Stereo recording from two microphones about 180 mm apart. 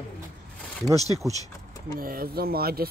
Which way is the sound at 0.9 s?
20° left (ahead or behind).